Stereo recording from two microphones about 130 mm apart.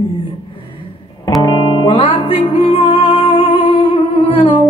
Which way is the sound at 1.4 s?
35° left (ahead or behind).